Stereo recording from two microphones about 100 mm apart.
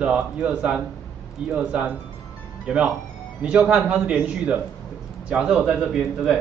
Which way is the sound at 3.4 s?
5° right (ahead or behind).